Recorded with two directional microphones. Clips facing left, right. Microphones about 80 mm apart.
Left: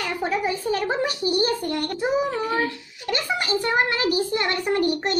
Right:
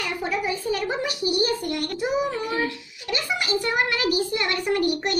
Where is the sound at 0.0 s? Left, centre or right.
Left.